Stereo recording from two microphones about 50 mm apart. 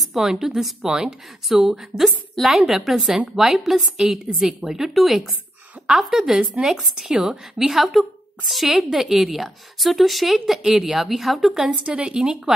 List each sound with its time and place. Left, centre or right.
0.0 s a woman's voice: centre
11.7 s speech: centre